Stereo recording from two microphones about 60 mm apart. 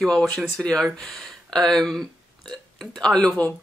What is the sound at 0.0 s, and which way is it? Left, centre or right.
Speech, centre.